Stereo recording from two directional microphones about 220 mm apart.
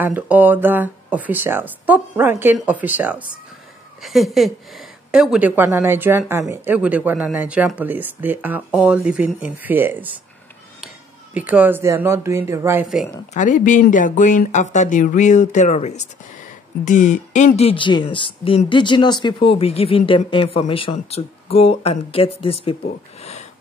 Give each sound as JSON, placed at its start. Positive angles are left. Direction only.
{"t": 0.0, "sound": "a woman's voice", "side_deg": -10}
{"t": 11.3, "sound": "speech", "side_deg": -5}
{"t": 12.8, "sound": "a woman's voice", "side_deg": 0}
{"t": 13.3, "sound": "speech", "side_deg": 35}